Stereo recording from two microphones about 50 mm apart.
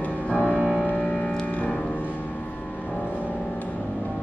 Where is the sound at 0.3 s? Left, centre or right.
Left.